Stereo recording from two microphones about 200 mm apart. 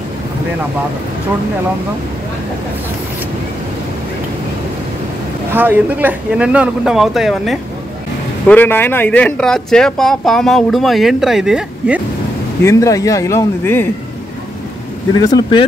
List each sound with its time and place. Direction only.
5.5 s speech: 10° right (ahead or behind)
8.5 s speech: 10° left (ahead or behind)
12.6 s speech: 15° left (ahead or behind)
15.1 s speech: 20° left (ahead or behind)